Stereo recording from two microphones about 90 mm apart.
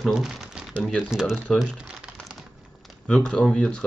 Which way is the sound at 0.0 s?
5° right (ahead or behind).